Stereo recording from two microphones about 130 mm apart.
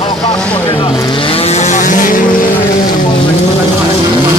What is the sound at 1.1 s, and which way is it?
Vehicle, 45° left (ahead or behind).